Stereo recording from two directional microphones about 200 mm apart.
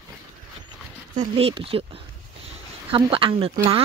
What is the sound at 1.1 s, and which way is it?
Speech, 35° right (ahead or behind).